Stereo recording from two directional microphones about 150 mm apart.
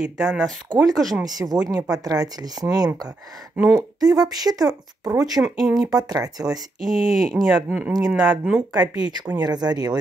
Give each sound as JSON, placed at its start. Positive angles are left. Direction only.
{"t": 0.0, "sound": "speech", "side_deg": -5}
{"t": 1.2, "sound": "speech", "side_deg": -25}
{"t": 5.4, "sound": "speech", "side_deg": -5}
{"t": 5.9, "sound": "speech", "side_deg": -25}
{"t": 6.8, "sound": "speech", "side_deg": 0}
{"t": 8.7, "sound": "speech", "side_deg": -25}